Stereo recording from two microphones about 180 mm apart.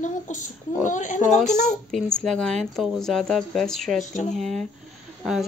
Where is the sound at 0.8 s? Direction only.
45° left (ahead or behind).